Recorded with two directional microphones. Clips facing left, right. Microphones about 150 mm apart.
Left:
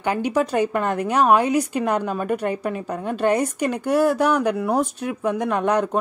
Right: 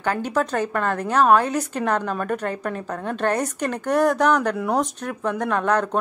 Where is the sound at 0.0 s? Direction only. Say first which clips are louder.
Left 2 dB; 15° left (ahead or behind).